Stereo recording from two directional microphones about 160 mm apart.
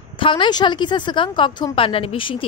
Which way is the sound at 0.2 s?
30° left (ahead or behind).